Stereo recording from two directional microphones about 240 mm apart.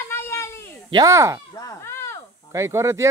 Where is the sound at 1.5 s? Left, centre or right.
Centre.